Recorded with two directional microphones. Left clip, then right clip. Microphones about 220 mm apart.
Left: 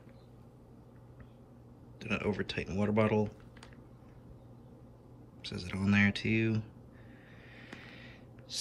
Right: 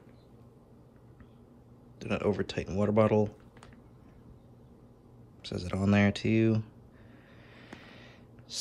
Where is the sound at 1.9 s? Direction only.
10° right (ahead or behind).